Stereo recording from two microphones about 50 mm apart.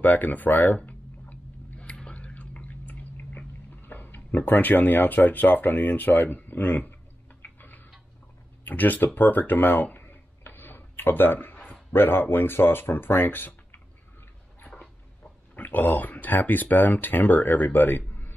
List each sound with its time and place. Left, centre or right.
0.0 s speech: left
0.7 s a sound: left
3.8 s speech: left
7.4 s tick-tock: left
8.6 s speech: left
11.5 s a sound: left
11.9 s speech: left
15.5 s speech: left